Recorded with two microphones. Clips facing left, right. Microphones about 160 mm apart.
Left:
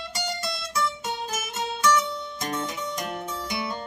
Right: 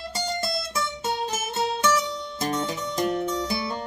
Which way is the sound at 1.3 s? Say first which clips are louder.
Right 4 dB; 30° right (ahead or behind).